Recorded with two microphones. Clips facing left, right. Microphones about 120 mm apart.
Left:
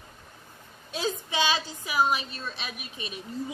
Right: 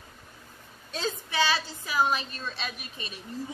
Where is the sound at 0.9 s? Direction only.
10° left (ahead or behind).